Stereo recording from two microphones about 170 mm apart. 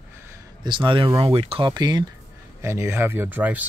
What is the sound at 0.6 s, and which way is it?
Speech, 30° right (ahead or behind).